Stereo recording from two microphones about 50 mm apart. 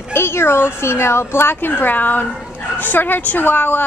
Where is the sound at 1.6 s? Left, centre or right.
Left.